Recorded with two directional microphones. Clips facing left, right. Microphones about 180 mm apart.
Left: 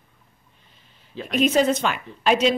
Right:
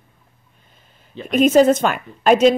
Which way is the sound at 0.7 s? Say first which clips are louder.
Right 3 dB; 45° right (ahead or behind).